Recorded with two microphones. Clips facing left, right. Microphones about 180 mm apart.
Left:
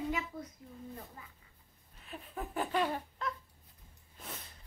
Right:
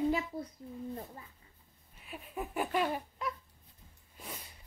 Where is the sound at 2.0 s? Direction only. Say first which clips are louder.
Right 2 dB; 10° right (ahead or behind).